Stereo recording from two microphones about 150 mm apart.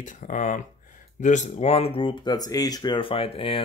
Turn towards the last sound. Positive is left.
turn(degrees=40)  # may be behind; listen again after turning